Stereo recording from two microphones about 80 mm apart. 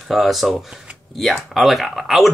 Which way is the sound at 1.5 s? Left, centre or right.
Centre.